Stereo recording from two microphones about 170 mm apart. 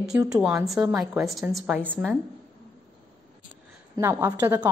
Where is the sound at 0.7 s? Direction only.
5° right (ahead or behind).